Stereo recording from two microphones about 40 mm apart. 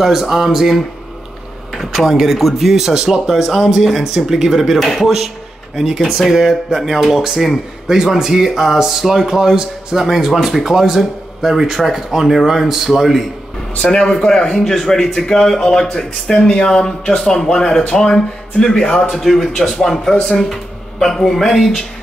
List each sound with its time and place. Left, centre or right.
0.0 s speech: centre
1.9 s speech: centre
4.7 s speech: centre
5.0 s speech: centre
13.7 s a man's voice: left
14.0 s a man's voice: centre
19.2 s a man's voice: centre